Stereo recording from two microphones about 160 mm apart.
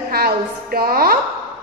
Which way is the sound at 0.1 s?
75° right (ahead or behind).